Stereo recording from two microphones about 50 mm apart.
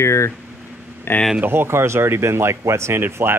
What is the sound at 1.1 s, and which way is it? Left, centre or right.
Speech, left.